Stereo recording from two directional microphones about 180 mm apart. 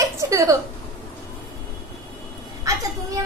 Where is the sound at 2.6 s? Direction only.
20° right (ahead or behind).